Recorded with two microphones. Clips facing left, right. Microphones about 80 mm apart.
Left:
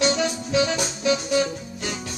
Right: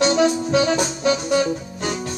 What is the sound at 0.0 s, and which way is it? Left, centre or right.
Music, right.